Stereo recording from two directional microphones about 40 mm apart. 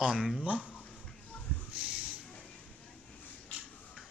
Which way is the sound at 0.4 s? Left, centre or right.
Right.